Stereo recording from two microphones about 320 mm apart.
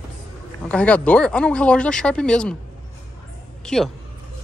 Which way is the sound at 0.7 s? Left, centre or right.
Centre.